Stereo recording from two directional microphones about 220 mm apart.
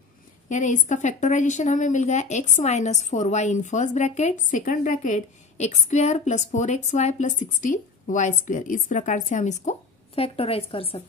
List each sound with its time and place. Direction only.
0.5 s a woman's voice: 35° left (ahead or behind)